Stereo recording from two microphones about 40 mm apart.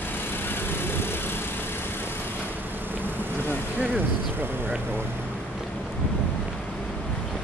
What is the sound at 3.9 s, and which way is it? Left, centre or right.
Speech, right.